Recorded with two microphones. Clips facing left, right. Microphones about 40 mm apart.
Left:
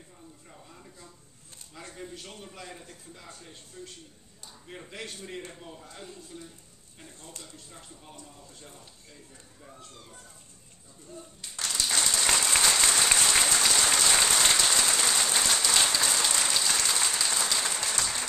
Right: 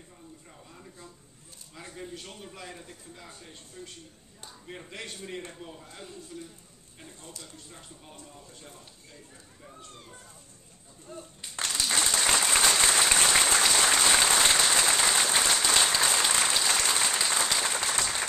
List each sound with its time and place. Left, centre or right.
1.8 s a man's voice: centre
11.1 s speech: right
11.8 s applause: centre